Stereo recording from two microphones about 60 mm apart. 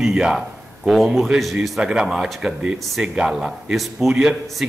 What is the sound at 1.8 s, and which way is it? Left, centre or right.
Speech, centre.